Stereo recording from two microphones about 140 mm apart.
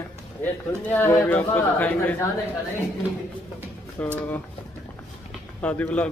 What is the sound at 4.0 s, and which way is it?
Speech, 10° left (ahead or behind).